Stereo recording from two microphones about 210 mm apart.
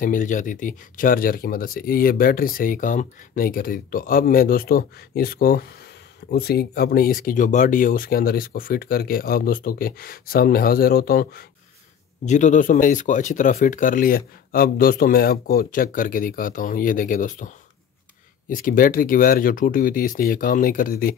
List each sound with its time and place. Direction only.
0.0 s speech: 40° left (ahead or behind)
12.3 s speech: 35° left (ahead or behind)
18.5 s speech: 40° left (ahead or behind)